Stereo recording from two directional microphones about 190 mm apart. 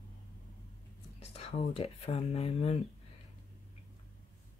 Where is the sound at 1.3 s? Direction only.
30° left (ahead or behind).